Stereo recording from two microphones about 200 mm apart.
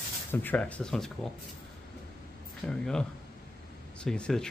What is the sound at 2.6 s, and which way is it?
Speech, 5° left (ahead or behind).